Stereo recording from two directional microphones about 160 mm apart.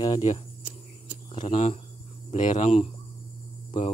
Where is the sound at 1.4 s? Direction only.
40° left (ahead or behind).